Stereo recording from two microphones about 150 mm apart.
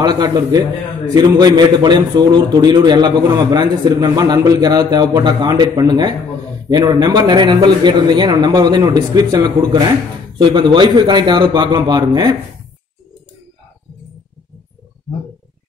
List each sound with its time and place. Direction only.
0.0 s a man's voice: 25° right (ahead or behind)